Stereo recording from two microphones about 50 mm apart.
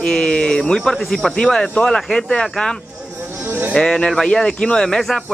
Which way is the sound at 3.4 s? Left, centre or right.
Right.